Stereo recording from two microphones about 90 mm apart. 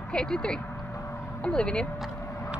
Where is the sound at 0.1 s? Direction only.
10° left (ahead or behind).